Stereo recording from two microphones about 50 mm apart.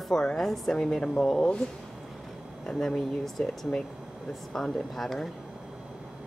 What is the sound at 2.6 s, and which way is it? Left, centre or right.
Speech, centre.